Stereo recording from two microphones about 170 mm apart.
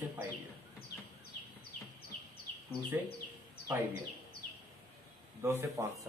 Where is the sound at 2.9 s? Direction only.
10° right (ahead or behind).